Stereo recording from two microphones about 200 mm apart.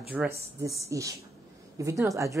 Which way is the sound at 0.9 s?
15° right (ahead or behind).